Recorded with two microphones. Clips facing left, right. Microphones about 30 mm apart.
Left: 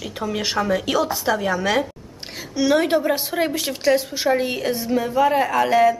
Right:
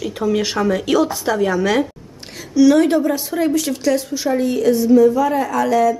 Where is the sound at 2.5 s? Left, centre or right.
Left.